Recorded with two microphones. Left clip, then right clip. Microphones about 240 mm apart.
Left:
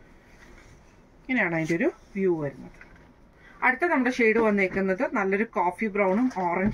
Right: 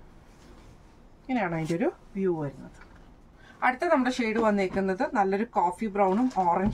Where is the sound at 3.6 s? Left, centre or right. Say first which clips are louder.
Left 1 dB; centre.